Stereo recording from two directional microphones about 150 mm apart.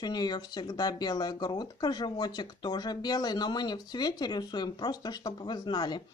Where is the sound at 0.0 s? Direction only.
30° left (ahead or behind).